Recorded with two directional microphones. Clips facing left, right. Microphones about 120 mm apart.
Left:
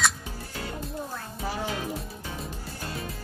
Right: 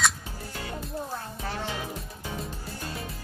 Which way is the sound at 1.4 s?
10° left (ahead or behind).